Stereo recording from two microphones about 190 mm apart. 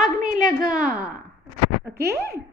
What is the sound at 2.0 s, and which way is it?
Speech, 60° right (ahead or behind).